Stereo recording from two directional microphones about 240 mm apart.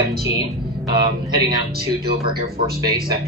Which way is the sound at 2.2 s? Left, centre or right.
Centre.